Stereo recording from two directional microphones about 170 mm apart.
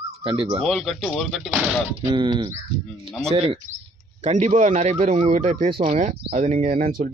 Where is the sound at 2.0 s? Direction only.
30° right (ahead or behind).